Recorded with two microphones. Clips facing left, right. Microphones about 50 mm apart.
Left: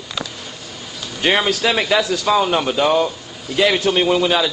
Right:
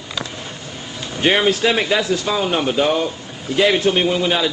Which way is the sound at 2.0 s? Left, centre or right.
Right.